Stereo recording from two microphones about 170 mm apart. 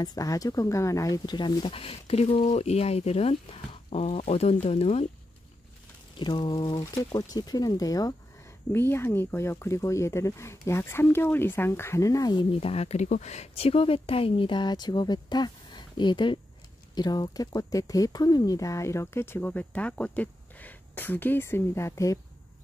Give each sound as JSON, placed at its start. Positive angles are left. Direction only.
{"t": 0.0, "sound": "speech", "side_deg": 20}
{"t": 6.1, "sound": "speech", "side_deg": 25}